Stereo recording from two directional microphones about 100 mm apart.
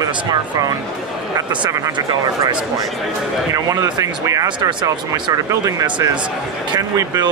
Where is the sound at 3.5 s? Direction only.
35° right (ahead or behind).